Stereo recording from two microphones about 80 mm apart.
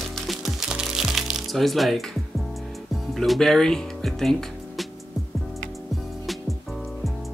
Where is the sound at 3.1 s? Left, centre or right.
Centre.